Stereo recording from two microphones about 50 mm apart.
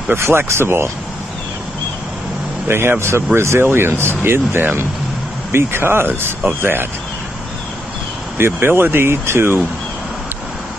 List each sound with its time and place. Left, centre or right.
0.1 s speech: right
2.7 s speech: right
8.4 s speech: right